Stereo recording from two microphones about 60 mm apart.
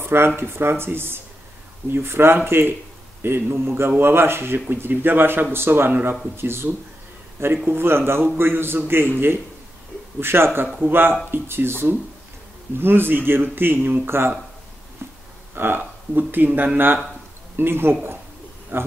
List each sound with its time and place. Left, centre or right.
0.0 s speech: right
10.2 s speech: right
15.0 s a sound: right
15.5 s speech: right